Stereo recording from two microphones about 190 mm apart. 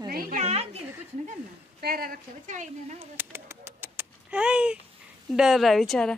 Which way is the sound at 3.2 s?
15° right (ahead or behind).